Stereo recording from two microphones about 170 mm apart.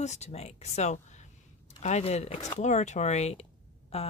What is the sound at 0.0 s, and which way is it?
Speech, 40° left (ahead or behind).